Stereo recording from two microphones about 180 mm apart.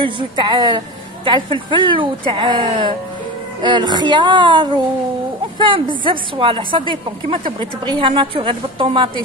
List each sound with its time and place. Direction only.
0.0 s a woman's voice: 25° right (ahead or behind)